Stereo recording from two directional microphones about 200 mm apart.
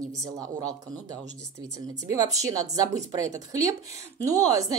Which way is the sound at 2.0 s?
15° right (ahead or behind).